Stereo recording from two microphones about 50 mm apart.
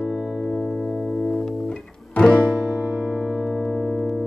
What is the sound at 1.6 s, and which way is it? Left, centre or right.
Music, centre.